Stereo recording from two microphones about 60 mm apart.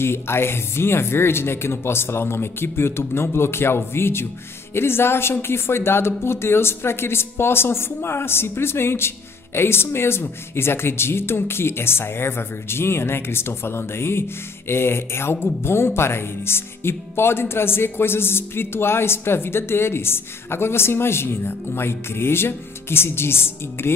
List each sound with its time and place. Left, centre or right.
0.0 s speech: left